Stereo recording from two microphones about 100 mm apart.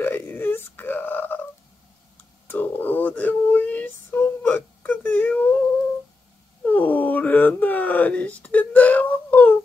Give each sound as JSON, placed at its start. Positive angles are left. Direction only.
{"t": 0.0, "sound": "wail", "side_deg": 20}
{"t": 2.4, "sound": "female singing", "side_deg": 20}
{"t": 6.6, "sound": "a sound", "side_deg": 15}